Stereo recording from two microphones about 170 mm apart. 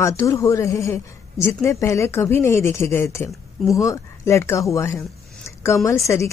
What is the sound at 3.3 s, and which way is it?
Speech, centre (ahead or behind).